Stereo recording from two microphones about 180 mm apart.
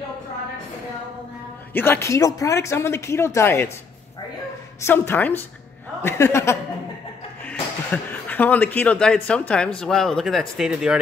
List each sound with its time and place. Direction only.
1.7 s speech: 10° left (ahead or behind)
4.8 s speech: 10° left (ahead or behind)
7.9 s speech: 10° left (ahead or behind)